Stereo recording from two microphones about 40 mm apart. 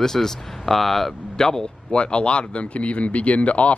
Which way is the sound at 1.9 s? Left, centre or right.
Left.